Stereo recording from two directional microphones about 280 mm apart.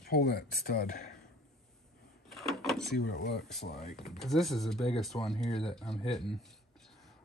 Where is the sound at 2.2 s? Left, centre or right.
Centre.